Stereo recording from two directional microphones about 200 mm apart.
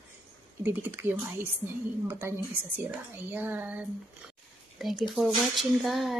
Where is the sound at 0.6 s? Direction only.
10° right (ahead or behind).